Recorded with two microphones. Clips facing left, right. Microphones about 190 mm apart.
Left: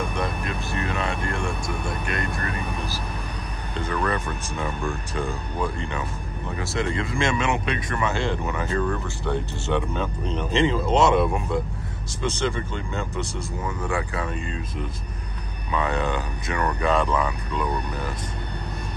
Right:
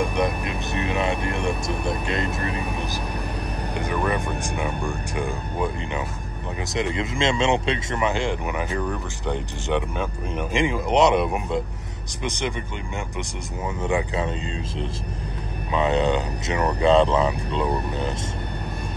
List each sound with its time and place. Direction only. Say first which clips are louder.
0.0 s speech: right 4 dB; 15° right (ahead or behind)